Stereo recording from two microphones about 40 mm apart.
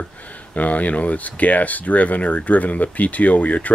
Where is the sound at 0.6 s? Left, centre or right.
Left.